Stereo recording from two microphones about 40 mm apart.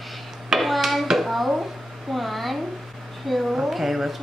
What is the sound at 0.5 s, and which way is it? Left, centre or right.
Hands, centre.